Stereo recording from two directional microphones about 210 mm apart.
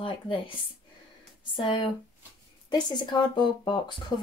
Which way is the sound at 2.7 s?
20° left (ahead or behind).